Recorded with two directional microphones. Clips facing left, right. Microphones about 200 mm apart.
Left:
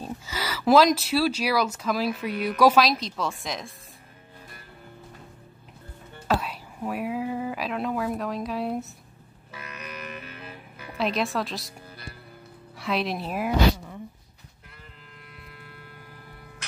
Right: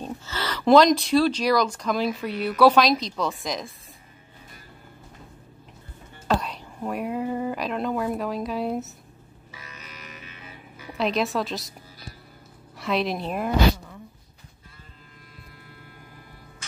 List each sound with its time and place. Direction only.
0.0 s speech: 10° left (ahead or behind)
6.2 s speech: 5° left (ahead or behind)
9.6 s music: 60° left (ahead or behind)
11.0 s speech: centre (ahead or behind)
12.7 s a woman's voice: centre (ahead or behind)